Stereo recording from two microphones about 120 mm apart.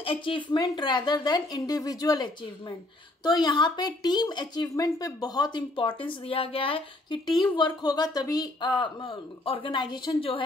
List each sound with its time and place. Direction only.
0.0 s speech: 45° left (ahead or behind)
3.3 s speech: 40° left (ahead or behind)
7.3 s a woman's voice: 40° left (ahead or behind)